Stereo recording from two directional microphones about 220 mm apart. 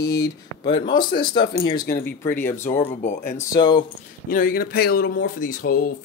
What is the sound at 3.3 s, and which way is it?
Speech, 20° left (ahead or behind).